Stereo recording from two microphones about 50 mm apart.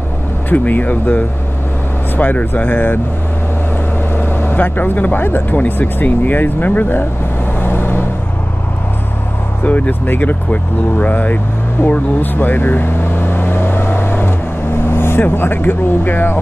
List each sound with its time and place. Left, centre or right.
0.5 s speech: left
4.2 s speech: left
7.6 s vehicle: left
9.6 s speech: left
11.8 s vehicle: left